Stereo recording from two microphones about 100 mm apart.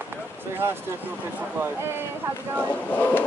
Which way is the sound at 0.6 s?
25° right (ahead or behind).